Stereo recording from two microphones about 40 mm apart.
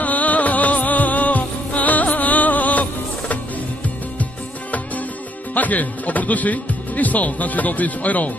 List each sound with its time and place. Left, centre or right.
0.0 s music: left
5.5 s speech: left